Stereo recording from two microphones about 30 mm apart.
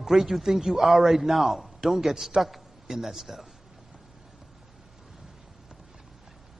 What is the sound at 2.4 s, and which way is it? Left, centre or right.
A man's voice, centre.